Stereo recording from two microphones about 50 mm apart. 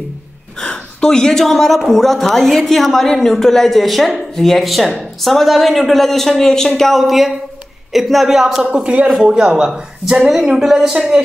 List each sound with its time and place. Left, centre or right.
0.6 s a man's voice: centre
6.8 s a man's voice: centre
8.6 s speech: right